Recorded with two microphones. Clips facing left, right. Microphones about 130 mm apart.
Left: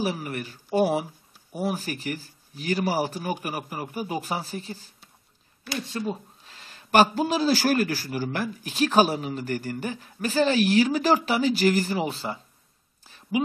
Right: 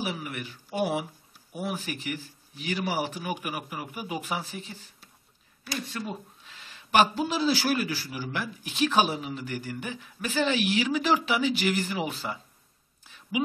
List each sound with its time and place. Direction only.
0.0 s speech: 40° left (ahead or behind)
5.6 s speech: centre (ahead or behind)
5.9 s speech: 30° left (ahead or behind)
13.0 s a sound: 35° left (ahead or behind)